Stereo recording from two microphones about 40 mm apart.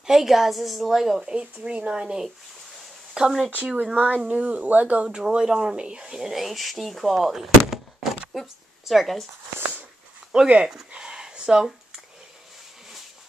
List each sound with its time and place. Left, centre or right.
0.0 s speech: centre
1.2 s speech: right
3.7 s speech: right
5.0 s speech: right; by 9.2 s centre
10.3 s speech: right
10.9 s a sound: centre